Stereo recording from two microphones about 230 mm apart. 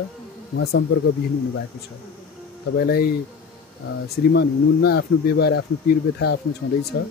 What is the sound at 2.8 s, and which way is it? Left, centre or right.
A woman's voice, left.